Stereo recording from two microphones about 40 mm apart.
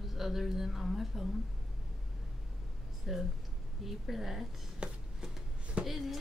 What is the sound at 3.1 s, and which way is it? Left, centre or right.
A woman's voice, centre.